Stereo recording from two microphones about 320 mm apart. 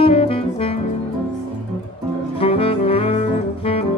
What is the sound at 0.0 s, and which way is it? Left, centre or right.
Music, centre.